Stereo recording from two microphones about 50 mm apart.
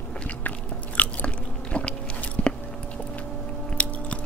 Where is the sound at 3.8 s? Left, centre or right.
Left.